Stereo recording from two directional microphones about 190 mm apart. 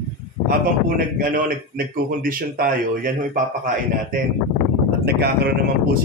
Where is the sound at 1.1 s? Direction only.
45° right (ahead or behind).